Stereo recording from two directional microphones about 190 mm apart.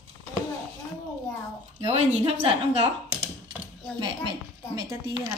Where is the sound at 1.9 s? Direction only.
35° right (ahead or behind).